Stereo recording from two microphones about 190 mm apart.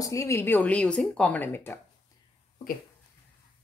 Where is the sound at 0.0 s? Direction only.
15° left (ahead or behind).